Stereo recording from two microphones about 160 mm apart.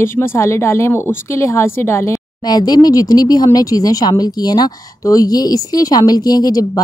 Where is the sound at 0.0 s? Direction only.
15° left (ahead or behind).